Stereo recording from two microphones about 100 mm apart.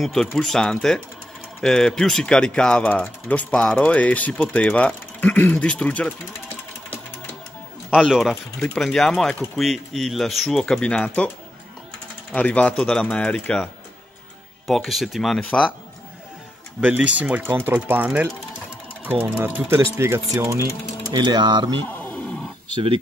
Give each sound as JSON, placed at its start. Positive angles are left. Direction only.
{"t": 0.0, "sound": "speech", "side_deg": 5}
{"t": 8.1, "sound": "speech", "side_deg": 0}
{"t": 12.4, "sound": "speech", "side_deg": 15}
{"t": 14.7, "sound": "speech", "side_deg": 0}
{"t": 16.8, "sound": "speech", "side_deg": -15}
{"t": 21.2, "sound": "speech", "side_deg": -50}
{"t": 21.8, "sound": "wild animals", "side_deg": 20}